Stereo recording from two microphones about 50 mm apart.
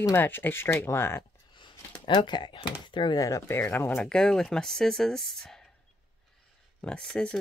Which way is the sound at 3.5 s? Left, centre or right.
Left.